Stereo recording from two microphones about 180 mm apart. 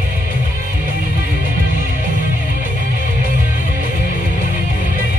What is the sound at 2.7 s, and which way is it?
Music, 50° right (ahead or behind).